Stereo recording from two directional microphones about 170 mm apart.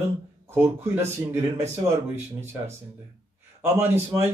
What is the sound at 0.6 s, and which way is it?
Speech, 15° right (ahead or behind).